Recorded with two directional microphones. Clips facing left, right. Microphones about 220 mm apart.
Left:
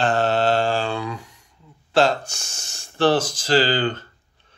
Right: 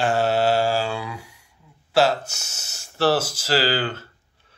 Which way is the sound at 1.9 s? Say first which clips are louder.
Left 1 dB; 5° right (ahead or behind).